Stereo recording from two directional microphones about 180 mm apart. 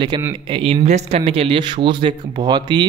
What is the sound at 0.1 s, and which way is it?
A man's voice, 25° right (ahead or behind).